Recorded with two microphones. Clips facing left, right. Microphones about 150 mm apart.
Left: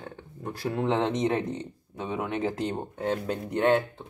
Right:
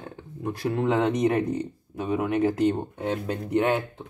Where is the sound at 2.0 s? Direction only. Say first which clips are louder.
Right 6 dB; 5° right (ahead or behind).